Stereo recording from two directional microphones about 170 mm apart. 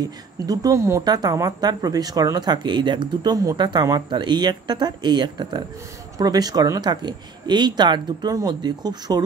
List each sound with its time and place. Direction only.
0.5 s speech: 20° right (ahead or behind)